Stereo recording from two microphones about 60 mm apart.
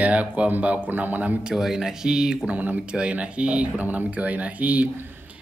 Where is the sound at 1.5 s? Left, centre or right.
Centre.